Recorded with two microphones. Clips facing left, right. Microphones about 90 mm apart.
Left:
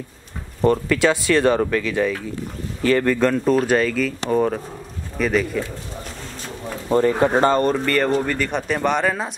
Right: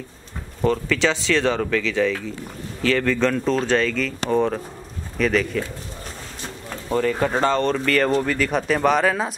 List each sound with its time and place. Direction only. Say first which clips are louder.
0.7 s speech: left 3 dB; 10° left (ahead or behind)
6.9 s speech: left 4 dB; 25° left (ahead or behind)
7.4 s speech: left 2 dB; 10° left (ahead or behind)